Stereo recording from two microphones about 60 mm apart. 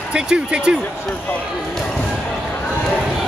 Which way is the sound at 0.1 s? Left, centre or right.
Centre.